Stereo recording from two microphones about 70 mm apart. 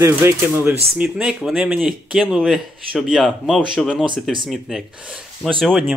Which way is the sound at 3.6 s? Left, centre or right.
Centre.